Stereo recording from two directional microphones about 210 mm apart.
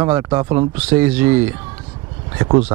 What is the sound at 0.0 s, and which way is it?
Speech, 10° right (ahead or behind).